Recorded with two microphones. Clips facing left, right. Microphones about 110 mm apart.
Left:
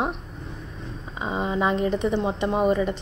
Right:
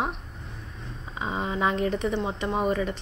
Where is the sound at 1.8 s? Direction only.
25° left (ahead or behind).